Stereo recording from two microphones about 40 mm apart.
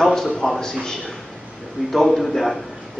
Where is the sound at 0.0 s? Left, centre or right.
Centre.